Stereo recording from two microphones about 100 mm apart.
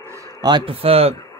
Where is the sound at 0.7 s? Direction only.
75° right (ahead or behind).